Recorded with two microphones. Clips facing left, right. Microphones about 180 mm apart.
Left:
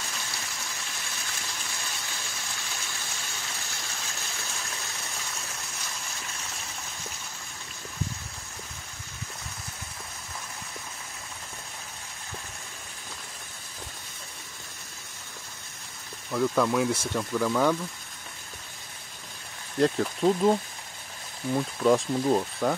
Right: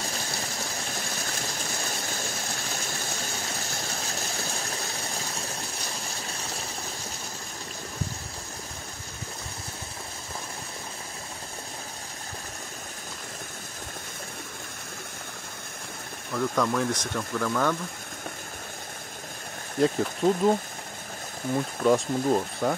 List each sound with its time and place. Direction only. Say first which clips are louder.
0.0 s a sound: right 5 dB; 40° right (ahead or behind)
16.3 s speech: left 2 dB; 5° left (ahead or behind)
19.8 s speech: even; centre (ahead or behind)
21.4 s speech: even; 45° right (ahead or behind)
21.8 s speech: even; centre (ahead or behind)